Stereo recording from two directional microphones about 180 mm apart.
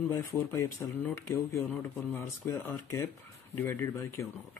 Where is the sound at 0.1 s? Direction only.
15° left (ahead or behind).